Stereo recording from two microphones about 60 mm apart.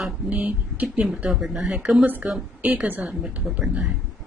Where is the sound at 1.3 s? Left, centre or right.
Centre.